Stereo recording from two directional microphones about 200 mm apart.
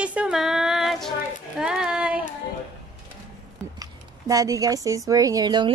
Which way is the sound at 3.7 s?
15° right (ahead or behind).